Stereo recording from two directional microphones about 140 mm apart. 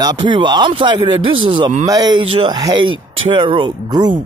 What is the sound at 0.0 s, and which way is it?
Speech, 30° right (ahead or behind).